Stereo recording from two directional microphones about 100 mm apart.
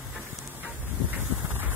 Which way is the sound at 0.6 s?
15° right (ahead or behind).